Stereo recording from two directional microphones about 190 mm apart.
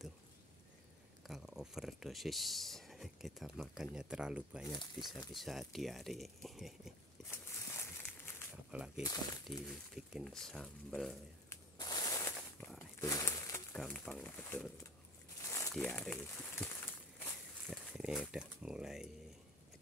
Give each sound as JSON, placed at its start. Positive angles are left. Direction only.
{"t": 1.2, "sound": "speech", "side_deg": 0}
{"t": 7.2, "sound": "a sound", "side_deg": 15}
{"t": 8.7, "sound": "speech", "side_deg": -5}
{"t": 9.0, "sound": "speech", "side_deg": 20}
{"t": 9.5, "sound": "speech", "side_deg": 0}
{"t": 11.4, "sound": "a sound", "side_deg": 20}
{"t": 13.7, "sound": "speech", "side_deg": 0}
{"t": 15.4, "sound": "a sound", "side_deg": 15}
{"t": 15.7, "sound": "speech", "side_deg": 10}